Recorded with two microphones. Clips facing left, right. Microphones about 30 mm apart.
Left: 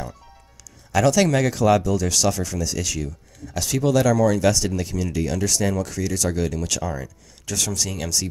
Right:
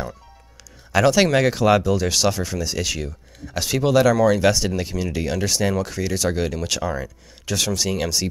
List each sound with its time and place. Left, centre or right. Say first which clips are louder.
0.9 s speech: right 2 dB; right